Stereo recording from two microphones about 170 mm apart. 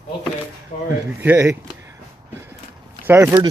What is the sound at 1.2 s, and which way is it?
Speech, 15° right (ahead or behind).